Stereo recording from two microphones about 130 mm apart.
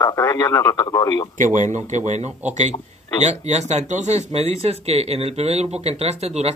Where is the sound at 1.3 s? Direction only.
70° right (ahead or behind).